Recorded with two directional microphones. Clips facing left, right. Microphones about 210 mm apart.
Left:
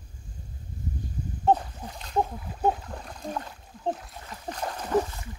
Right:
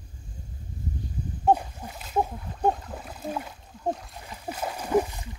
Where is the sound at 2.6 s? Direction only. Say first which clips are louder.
Right 1 dB; 5° left (ahead or behind).